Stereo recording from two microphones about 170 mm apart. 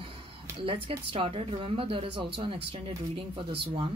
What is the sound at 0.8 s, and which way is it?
Speech, 35° right (ahead or behind).